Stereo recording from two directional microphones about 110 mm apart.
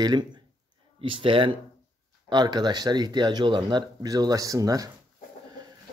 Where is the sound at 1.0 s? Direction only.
55° right (ahead or behind).